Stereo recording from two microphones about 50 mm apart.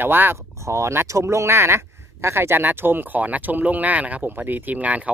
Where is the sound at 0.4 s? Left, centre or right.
Right.